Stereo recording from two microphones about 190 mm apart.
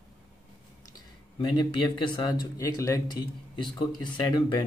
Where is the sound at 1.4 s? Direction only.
25° left (ahead or behind).